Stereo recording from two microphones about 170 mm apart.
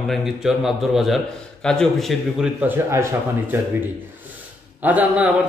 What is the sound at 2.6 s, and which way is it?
Speech, 15° right (ahead or behind).